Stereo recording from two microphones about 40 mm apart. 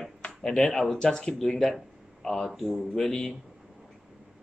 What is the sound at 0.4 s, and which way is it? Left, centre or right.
Speech, centre.